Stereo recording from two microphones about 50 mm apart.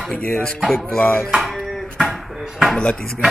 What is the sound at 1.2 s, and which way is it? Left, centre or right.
Dishes, centre.